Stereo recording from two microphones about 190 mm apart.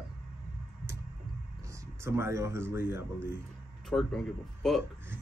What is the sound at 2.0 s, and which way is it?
Speech, 15° right (ahead or behind).